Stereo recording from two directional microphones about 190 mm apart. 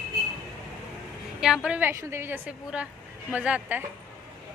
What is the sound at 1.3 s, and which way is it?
A woman's voice, 5° right (ahead or behind).